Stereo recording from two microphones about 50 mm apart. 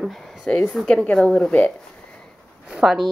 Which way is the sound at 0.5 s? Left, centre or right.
Centre.